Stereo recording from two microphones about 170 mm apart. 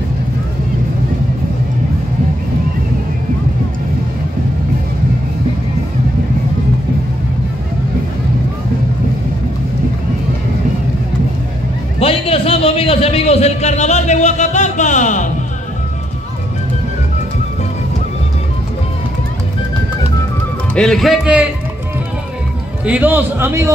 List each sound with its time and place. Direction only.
12.0 s a sound: 35° left (ahead or behind)
20.7 s speech: 5° left (ahead or behind)
22.8 s a man's voice: 10° right (ahead or behind)